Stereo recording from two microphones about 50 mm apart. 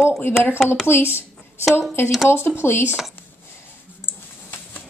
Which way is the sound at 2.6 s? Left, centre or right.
Left.